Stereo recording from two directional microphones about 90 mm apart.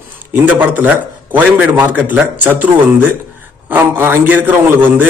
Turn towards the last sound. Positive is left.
turn(degrees=-20)  # may be behind; listen again after turning